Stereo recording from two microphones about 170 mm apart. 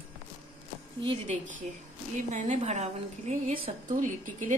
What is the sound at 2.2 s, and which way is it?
Speech, 45° right (ahead or behind).